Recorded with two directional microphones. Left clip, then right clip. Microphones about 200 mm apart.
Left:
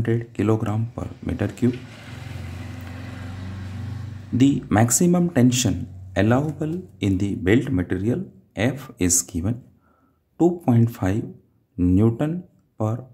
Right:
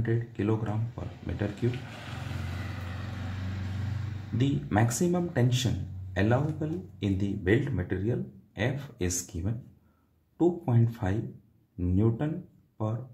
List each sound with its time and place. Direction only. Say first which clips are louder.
0.0 s speech: left 8 dB; 40° left (ahead or behind)
4.4 s speech: left 9 dB; 40° left (ahead or behind)